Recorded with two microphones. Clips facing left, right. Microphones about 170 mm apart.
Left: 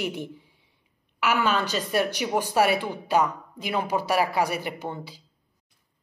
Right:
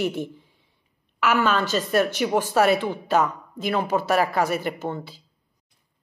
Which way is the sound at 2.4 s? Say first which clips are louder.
Right 2 dB; 15° left (ahead or behind).